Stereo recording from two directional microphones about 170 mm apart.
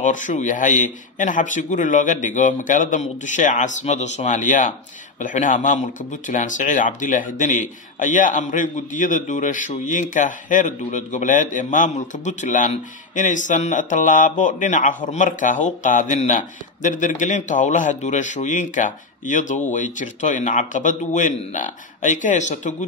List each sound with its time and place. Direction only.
0.0 s speech: 45° left (ahead or behind)